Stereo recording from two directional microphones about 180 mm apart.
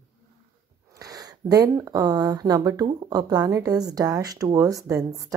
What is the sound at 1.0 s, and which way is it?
Speech, 20° right (ahead or behind).